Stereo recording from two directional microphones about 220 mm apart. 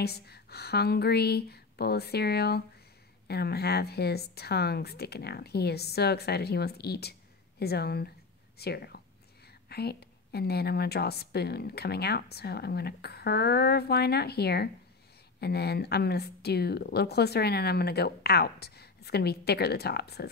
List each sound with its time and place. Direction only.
0.0 s a woman's voice: 45° left (ahead or behind)